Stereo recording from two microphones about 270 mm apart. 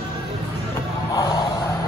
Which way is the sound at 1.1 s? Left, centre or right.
Centre.